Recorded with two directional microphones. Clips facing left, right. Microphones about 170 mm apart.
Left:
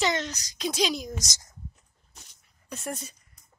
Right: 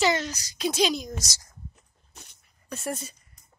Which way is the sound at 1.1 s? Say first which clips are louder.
Even; 20° left (ahead or behind).